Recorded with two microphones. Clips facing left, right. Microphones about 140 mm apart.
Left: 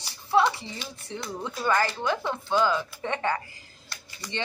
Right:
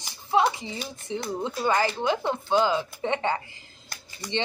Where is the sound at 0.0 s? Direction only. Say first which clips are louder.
Even; 15° right (ahead or behind).